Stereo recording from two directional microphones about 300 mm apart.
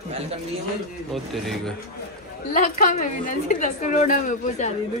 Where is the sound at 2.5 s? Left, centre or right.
Left.